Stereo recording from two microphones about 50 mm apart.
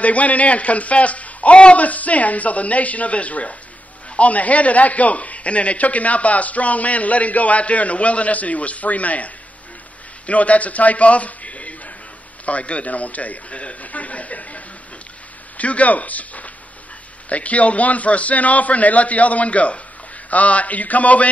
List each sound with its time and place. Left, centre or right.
0.0 s a man's voice: left